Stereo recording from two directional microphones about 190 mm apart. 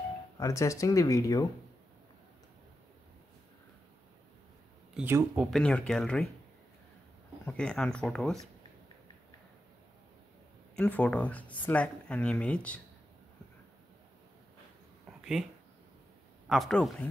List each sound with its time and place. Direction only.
0.4 s speech: 15° left (ahead or behind)
4.9 s speech: 10° right (ahead or behind)
5.6 s speech: 5° left (ahead or behind)
7.4 s speech: 5° left (ahead or behind)
10.8 s speech: 5° left (ahead or behind)
16.4 s speech: centre (ahead or behind)